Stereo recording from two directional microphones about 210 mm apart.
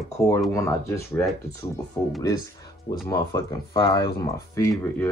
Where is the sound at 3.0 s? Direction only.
15° left (ahead or behind).